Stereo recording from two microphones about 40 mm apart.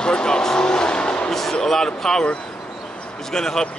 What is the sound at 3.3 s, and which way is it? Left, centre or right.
Speech, centre.